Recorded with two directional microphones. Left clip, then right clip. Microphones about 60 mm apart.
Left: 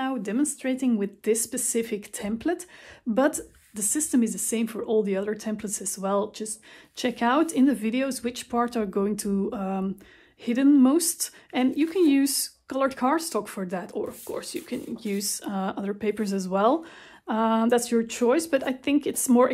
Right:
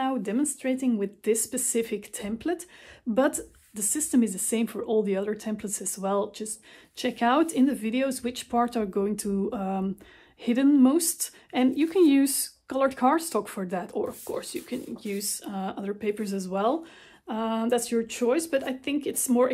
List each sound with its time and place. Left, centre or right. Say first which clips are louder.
0.0 s speech: even; centre; by 4.0 s left
4.3 s speech: even; centre; by 11.7 s left
11.7 s speech: right 1 dB; centre
12.7 s speech: right 1 dB; centre
15.1 s speech: left 5 dB; left